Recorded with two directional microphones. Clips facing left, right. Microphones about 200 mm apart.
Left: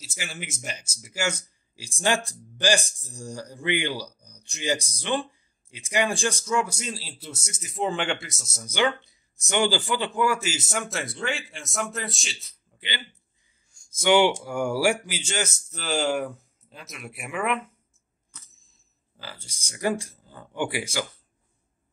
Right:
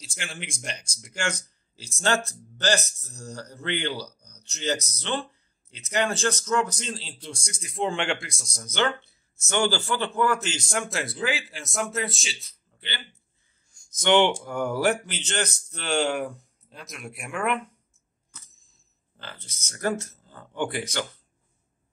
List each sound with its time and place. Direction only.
0.0 s speech: 5° left (ahead or behind)
12.7 s a sound: 15° left (ahead or behind)
13.9 s speech: 10° left (ahead or behind)
19.1 s speech: 10° left (ahead or behind)